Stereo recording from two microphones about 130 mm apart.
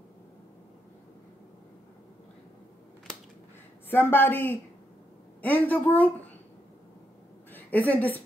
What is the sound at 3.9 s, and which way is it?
A woman's voice, 15° left (ahead or behind).